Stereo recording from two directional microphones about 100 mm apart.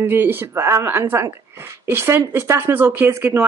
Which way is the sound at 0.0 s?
20° right (ahead or behind).